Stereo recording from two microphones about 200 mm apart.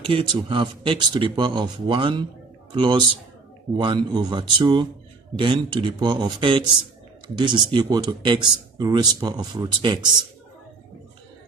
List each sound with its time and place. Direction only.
0.0 s speech: 25° right (ahead or behind)